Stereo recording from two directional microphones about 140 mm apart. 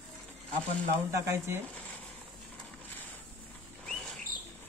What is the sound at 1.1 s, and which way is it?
Speech, 20° right (ahead or behind).